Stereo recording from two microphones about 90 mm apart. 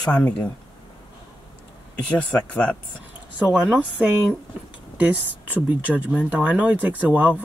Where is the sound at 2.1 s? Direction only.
10° left (ahead or behind).